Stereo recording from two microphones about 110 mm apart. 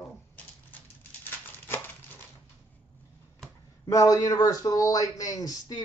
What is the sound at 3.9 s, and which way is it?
A man's voice, 30° left (ahead or behind).